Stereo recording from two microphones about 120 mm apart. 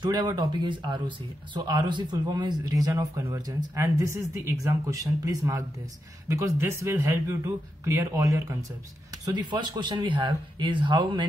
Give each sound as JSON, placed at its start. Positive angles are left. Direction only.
{"t": 0.0, "sound": "speech", "side_deg": -35}
{"t": 9.2, "sound": "speech", "side_deg": -35}